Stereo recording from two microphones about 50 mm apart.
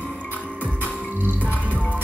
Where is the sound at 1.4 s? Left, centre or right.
Left.